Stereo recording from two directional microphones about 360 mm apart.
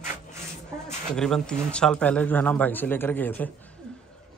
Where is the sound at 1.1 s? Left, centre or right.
Centre.